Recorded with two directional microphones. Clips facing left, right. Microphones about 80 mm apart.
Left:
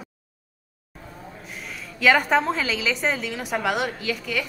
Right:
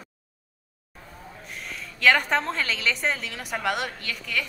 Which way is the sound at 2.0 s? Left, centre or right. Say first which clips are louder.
Left 3 dB; centre.